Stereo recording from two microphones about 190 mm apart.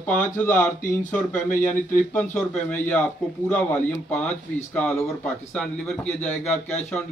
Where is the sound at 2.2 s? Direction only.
10° left (ahead or behind).